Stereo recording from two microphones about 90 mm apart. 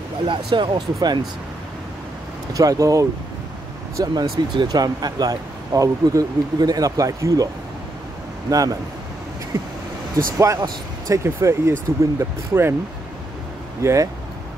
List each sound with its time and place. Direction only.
0.2 s speech: 70° right (ahead or behind)
0.9 s speech: 50° right (ahead or behind)
2.5 s speech: 40° right (ahead or behind)
4.0 s speech: 55° right (ahead or behind)
8.5 s speech: 40° right (ahead or behind)
10.1 s speech: 35° right (ahead or behind)
13.8 s speech: 30° right (ahead or behind)